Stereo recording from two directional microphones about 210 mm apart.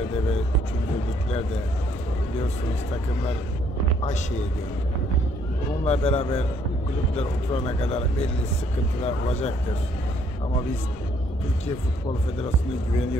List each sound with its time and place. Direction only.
5.9 s speech: 30° left (ahead or behind)